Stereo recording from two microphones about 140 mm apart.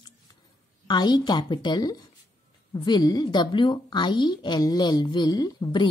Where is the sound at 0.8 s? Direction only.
30° left (ahead or behind).